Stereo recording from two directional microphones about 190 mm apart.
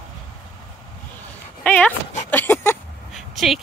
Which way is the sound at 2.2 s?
10° left (ahead or behind).